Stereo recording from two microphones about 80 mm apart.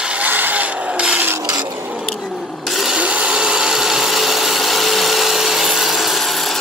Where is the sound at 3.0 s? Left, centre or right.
Centre.